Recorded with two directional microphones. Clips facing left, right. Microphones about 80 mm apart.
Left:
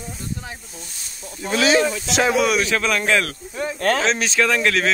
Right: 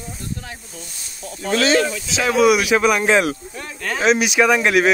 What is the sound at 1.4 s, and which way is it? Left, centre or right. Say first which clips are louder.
Speech: right 1 dB; centre.